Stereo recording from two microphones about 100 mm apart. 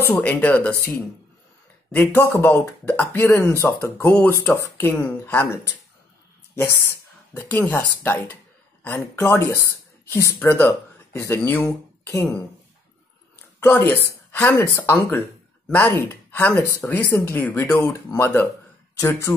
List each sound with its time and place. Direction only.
0.1 s speech: 15° left (ahead or behind)
3.2 s speech: 25° left (ahead or behind)
6.5 s a sound: 25° left (ahead or behind)
7.5 s speech: 20° left (ahead or behind)
13.6 s speech: 20° left (ahead or behind)
18.9 s speech: 30° left (ahead or behind)